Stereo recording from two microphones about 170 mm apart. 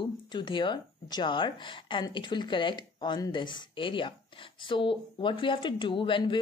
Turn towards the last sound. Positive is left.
turn(degrees=30)  # may be behind; listen again after turning